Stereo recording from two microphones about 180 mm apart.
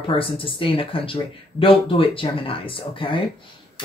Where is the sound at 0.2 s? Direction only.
30° left (ahead or behind).